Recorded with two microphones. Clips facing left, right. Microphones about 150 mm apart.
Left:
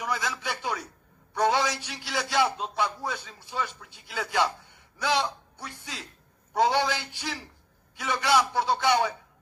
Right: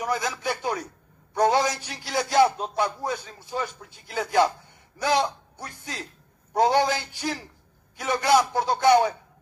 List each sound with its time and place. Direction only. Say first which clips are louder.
0.0 s a man's voice: right 4 dB; 45° right (ahead or behind)